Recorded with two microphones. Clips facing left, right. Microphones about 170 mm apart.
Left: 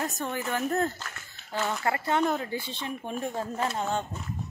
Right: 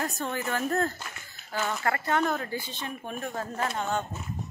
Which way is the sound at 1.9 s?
20° left (ahead or behind).